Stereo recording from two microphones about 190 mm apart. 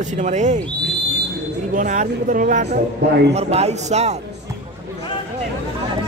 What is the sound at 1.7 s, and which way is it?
Speech, 40° right (ahead or behind).